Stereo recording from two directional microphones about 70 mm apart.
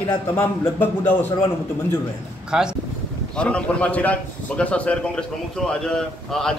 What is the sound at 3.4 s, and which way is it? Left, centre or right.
A man's voice, centre.